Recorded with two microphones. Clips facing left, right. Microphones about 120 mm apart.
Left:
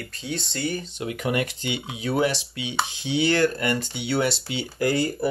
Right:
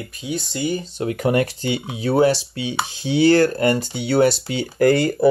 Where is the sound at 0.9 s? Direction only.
40° right (ahead or behind).